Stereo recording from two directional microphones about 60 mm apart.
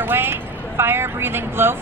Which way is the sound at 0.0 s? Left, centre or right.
Right.